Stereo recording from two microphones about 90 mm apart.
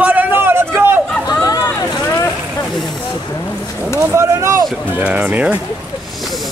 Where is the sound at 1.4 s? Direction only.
45° left (ahead or behind).